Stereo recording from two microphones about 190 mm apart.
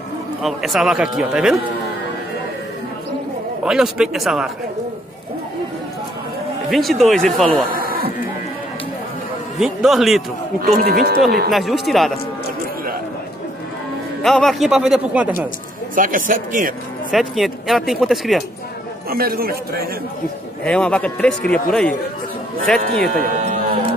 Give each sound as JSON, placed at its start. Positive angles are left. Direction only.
{"t": 0.4, "sound": "a man's voice", "side_deg": 0}
{"t": 3.6, "sound": "a man's voice", "side_deg": -5}
{"t": 6.7, "sound": "a man's voice", "side_deg": 0}
{"t": 7.7, "sound": "a sound", "side_deg": -50}
{"t": 9.6, "sound": "a man's voice", "side_deg": 0}
{"t": 10.6, "sound": "speech", "side_deg": -50}
{"t": 11.5, "sound": "a man's voice", "side_deg": 0}
{"t": 14.2, "sound": "a man's voice", "side_deg": 0}
{"t": 15.9, "sound": "speech", "side_deg": -45}
{"t": 17.1, "sound": "a man's voice", "side_deg": 0}
{"t": 19.0, "sound": "speech", "side_deg": -50}
{"t": 20.6, "sound": "a man's voice", "side_deg": 5}
{"t": 23.4, "sound": "a sound", "side_deg": -40}